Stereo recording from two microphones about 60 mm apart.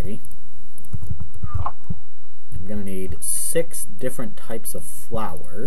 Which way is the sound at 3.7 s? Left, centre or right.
Centre.